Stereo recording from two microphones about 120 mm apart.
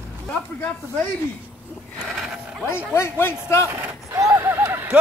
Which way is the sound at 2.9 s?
20° left (ahead or behind).